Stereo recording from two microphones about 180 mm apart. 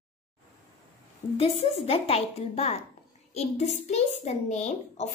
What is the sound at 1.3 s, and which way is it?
A child's voice, 35° left (ahead or behind).